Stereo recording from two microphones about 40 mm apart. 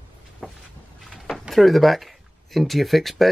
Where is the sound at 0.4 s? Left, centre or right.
Centre.